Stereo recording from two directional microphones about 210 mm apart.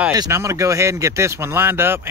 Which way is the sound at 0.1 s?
15° right (ahead or behind).